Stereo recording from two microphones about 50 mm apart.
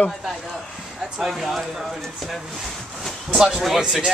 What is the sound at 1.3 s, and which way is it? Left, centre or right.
Speech, centre.